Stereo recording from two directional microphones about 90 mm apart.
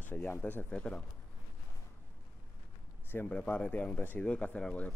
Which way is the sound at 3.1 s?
15° left (ahead or behind).